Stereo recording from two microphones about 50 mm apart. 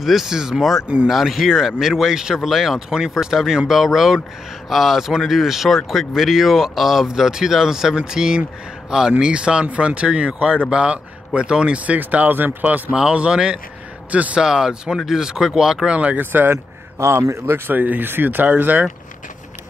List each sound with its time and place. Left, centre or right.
0.0 s speech: centre; by 12.9 s right
12.9 s speech: centre
14.4 s speech: centre
16.2 s speech: right
17.0 s speech: right
17.6 s speech: right